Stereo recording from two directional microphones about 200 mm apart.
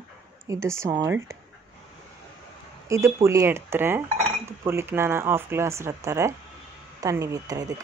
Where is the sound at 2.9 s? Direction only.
15° right (ahead or behind).